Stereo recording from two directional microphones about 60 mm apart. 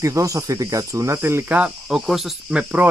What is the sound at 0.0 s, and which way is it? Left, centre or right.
Speech, right.